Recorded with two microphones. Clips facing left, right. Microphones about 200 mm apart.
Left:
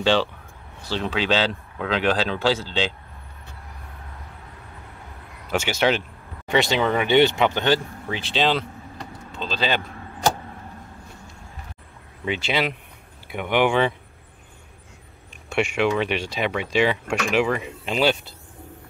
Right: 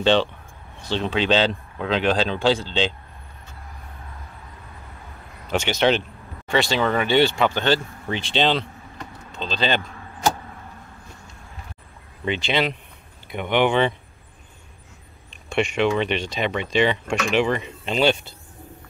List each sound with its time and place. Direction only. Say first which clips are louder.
1.1 s speech: right 3 dB; 5° left (ahead or behind)
5.5 s speech: right 2 dB; 5° left (ahead or behind)
6.4 s speech: even; 20° left (ahead or behind)
8.1 s speech: right 1 dB; 5° left (ahead or behind)
12.3 s speech: right 1 dB; 5° left (ahead or behind)
15.5 s speech: right 1 dB; 10° left (ahead or behind)